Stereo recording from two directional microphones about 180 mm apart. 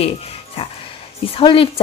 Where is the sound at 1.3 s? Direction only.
30° left (ahead or behind).